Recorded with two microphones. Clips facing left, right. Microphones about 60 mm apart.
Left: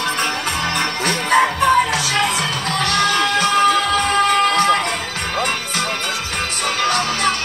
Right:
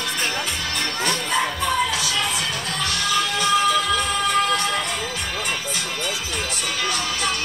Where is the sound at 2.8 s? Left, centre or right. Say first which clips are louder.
Left 6 dB; left.